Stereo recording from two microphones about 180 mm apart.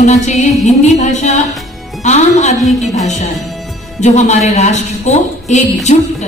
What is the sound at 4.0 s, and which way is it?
A woman's voice, 40° left (ahead or behind).